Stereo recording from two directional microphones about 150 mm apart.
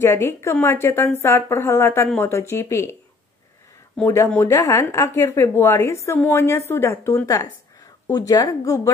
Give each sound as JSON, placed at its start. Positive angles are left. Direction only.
{"t": 0.0, "sound": "speech", "side_deg": 20}